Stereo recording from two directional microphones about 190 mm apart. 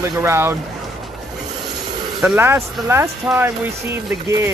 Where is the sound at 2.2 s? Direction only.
10° right (ahead or behind).